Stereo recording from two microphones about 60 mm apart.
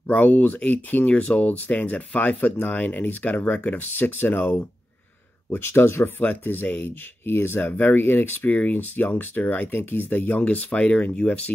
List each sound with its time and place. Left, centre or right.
0.1 s speech: left